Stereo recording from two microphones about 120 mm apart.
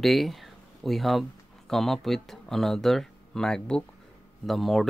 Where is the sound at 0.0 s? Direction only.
Centre (ahead or behind).